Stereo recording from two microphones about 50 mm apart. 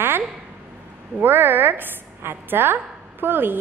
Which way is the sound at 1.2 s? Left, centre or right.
Right.